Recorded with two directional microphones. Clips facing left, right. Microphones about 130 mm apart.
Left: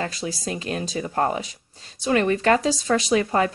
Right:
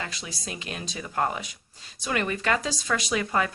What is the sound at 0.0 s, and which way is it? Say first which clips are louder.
Speech: left 8 dB; 40° left (ahead or behind).